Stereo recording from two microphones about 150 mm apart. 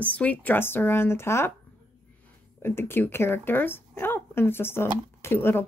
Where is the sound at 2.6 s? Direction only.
15° left (ahead or behind).